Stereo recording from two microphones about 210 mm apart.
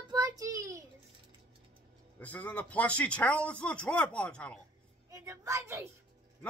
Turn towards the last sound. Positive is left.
turn(degrees=-15)  # may be behind; listen again after turning